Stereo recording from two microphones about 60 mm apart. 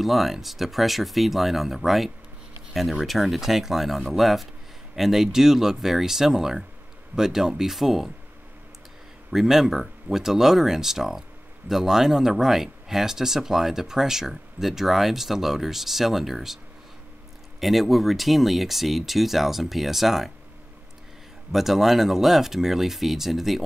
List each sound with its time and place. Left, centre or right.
0.0 s speech: centre
9.3 s speech: centre
17.6 s speech: centre
21.5 s speech: centre